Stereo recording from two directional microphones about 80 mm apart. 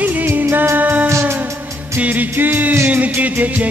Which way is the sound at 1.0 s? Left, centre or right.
Right.